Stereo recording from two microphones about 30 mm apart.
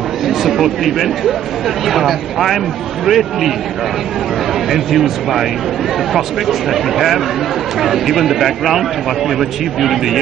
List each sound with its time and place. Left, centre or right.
0.3 s speech: centre
4.6 s speech: centre